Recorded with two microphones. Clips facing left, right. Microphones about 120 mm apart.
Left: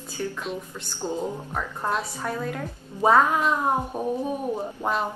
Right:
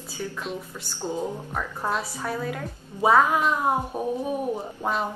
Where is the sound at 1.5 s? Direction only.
Centre (ahead or behind).